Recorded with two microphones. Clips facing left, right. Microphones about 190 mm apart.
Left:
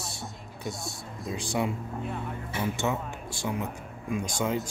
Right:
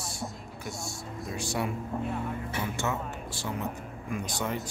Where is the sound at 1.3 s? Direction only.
20° left (ahead or behind).